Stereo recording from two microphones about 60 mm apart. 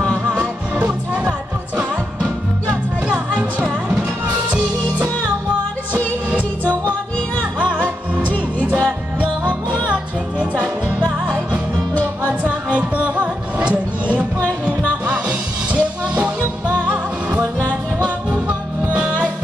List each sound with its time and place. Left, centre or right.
0.4 s music: right
3.1 s music: centre
7.5 s music: right
12.3 s music: right